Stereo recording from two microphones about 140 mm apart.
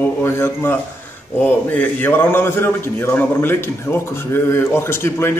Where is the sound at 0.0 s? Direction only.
20° left (ahead or behind).